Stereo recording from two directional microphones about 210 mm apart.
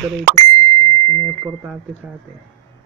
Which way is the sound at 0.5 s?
15° left (ahead or behind).